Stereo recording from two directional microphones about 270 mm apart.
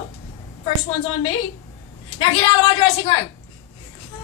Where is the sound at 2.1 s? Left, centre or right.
Centre.